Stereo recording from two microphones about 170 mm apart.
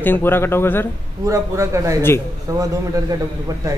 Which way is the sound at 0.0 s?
10° left (ahead or behind).